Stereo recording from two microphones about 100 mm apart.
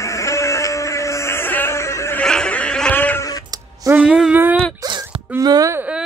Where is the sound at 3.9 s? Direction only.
15° right (ahead or behind).